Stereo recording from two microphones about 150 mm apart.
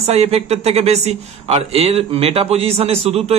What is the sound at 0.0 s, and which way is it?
Speech, 45° right (ahead or behind).